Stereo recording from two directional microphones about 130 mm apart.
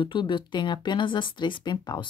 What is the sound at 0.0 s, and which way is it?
A woman's voice, 40° left (ahead or behind).